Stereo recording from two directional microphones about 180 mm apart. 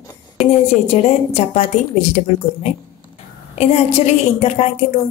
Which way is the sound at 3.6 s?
35° left (ahead or behind).